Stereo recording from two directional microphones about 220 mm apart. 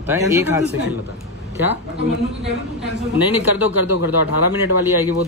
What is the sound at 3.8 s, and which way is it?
Speech, 90° left.